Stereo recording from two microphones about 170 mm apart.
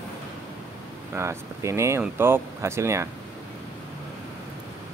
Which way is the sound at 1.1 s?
15° right (ahead or behind).